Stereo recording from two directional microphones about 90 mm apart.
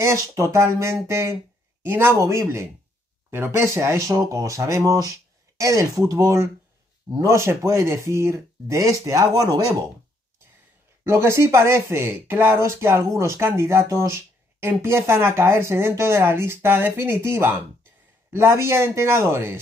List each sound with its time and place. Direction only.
0.0 s speech: 35° right (ahead or behind)
11.1 s speech: 30° right (ahead or behind)
14.0 s a sound: 30° right (ahead or behind)
14.7 s speech: 25° right (ahead or behind)